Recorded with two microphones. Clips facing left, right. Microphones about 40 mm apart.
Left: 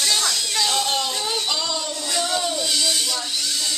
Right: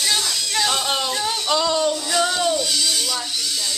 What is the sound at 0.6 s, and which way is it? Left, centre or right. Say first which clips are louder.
Music: right 2 dB; centre.